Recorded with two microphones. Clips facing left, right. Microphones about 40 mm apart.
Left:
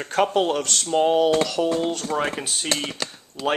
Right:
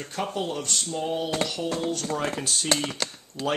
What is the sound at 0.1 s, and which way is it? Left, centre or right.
Speech, left.